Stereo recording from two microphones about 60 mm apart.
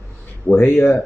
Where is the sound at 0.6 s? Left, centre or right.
Left.